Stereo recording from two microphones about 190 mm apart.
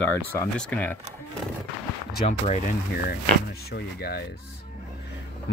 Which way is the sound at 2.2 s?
35° left (ahead or behind).